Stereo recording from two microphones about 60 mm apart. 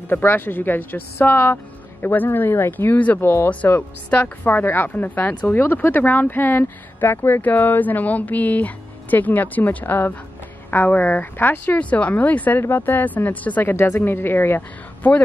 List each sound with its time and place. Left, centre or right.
0.1 s speech: left
13.7 s speech: left